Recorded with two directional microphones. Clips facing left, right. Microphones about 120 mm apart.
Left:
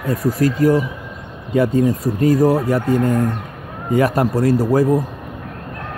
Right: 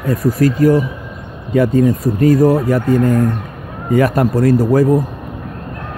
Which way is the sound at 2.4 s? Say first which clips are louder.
Right 3 dB; 15° left (ahead or behind).